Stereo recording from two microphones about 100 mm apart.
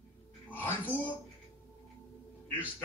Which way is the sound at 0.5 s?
20° left (ahead or behind).